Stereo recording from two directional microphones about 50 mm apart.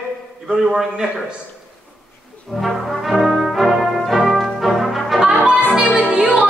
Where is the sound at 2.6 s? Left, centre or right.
Centre.